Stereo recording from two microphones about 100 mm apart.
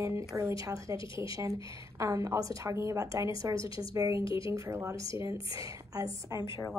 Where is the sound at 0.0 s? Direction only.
30° right (ahead or behind).